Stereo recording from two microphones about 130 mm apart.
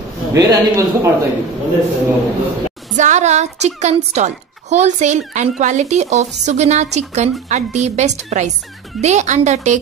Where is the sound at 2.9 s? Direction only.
70° right (ahead or behind).